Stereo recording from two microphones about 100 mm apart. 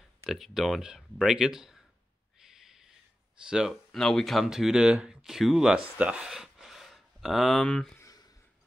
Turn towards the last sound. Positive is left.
turn(degrees=5)  # may be behind; listen again after turning